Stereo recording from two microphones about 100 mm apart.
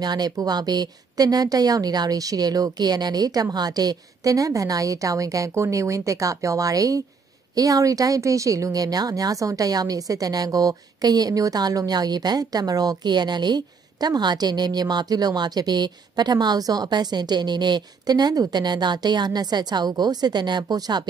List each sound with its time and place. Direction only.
0.0 s speech: 40° right (ahead or behind)